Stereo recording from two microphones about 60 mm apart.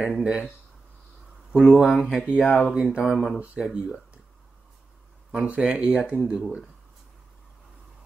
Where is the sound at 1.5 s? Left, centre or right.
Centre.